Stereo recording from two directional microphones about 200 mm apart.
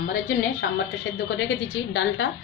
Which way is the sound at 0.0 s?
50° left (ahead or behind).